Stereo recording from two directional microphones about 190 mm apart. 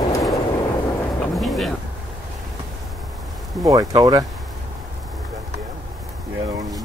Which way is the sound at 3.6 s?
20° right (ahead or behind).